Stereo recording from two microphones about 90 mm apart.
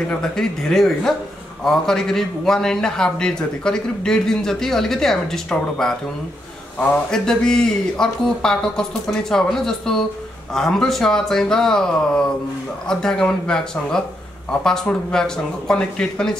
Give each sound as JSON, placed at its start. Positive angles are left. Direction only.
{"t": 0.1, "sound": "a man's voice", "side_deg": 5}
{"t": 7.1, "sound": "a man's voice", "side_deg": 5}